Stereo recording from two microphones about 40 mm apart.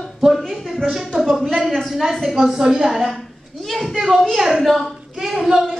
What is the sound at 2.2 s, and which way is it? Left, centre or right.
Speech, centre.